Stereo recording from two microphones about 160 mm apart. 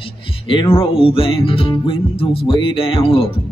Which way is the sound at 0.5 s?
35° left (ahead or behind).